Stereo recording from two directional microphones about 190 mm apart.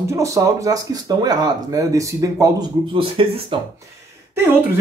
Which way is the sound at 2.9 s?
25° right (ahead or behind).